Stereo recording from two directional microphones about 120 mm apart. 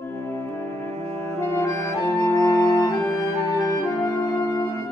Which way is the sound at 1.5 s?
25° left (ahead or behind).